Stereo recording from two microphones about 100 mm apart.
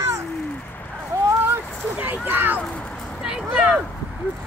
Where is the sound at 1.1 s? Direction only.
30° right (ahead or behind).